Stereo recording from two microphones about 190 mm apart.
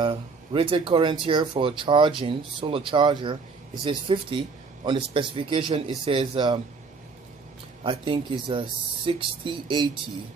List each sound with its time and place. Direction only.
0.0 s speech: 25° right (ahead or behind)
7.8 s speech: 25° right (ahead or behind)